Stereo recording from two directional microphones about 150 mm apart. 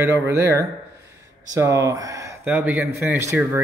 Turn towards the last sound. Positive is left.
turn(degrees=-15)  # may be behind; listen again after turning